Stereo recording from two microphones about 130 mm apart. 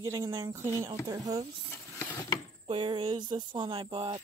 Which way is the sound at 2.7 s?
40° right (ahead or behind).